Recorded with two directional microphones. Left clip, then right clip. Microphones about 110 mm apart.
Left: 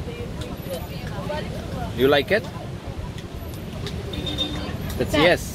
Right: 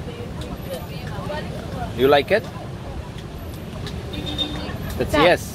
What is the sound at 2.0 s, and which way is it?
Speech, 35° left (ahead or behind).